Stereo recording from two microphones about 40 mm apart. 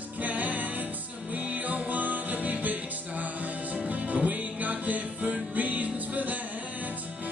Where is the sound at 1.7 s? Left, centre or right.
Right.